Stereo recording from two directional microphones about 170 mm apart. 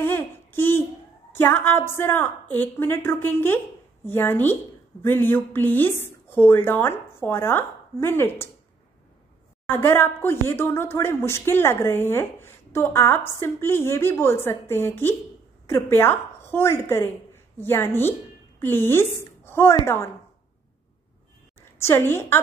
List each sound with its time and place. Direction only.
0.0 s a sound: 15° left (ahead or behind)
1.3 s speech: 10° left (ahead or behind)
9.7 s a woman's voice: 15° left (ahead or behind)
21.5 s a woman's voice: 15° left (ahead or behind)